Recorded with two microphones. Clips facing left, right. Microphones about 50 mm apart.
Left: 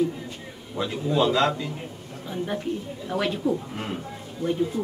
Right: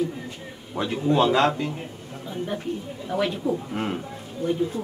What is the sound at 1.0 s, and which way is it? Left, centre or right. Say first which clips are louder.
Speech: right 2 dB; right.